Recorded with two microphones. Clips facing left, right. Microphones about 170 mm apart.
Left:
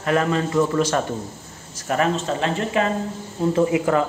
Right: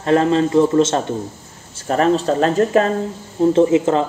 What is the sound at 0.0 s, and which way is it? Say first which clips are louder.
Speech: right 6 dB; 30° right (ahead or behind).